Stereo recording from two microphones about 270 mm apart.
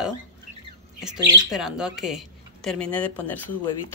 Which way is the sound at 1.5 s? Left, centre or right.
Centre.